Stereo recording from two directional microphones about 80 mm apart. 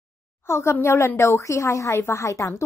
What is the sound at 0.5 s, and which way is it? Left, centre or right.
A woman's voice, left.